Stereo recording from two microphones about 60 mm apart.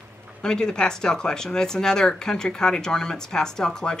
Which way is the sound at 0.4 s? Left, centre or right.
Centre.